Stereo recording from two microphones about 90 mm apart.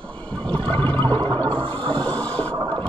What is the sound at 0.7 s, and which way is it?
Toilet flush, 20° left (ahead or behind).